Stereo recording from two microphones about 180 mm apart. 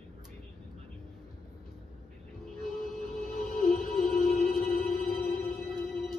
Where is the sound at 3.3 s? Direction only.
50° left (ahead or behind).